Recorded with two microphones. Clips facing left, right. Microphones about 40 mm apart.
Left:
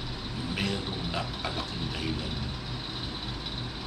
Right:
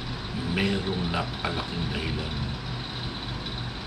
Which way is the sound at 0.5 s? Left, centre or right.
Centre.